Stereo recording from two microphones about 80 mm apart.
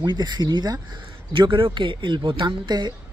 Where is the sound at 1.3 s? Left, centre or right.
Right.